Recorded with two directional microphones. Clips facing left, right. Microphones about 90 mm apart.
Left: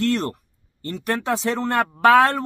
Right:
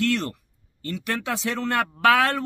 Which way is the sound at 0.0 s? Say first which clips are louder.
Left 2 dB; 40° left (ahead or behind).